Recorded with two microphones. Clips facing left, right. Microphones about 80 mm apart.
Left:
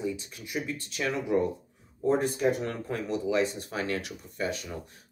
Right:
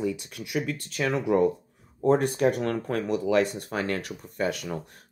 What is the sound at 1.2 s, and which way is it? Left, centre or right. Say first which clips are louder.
Speech: right 6 dB; right.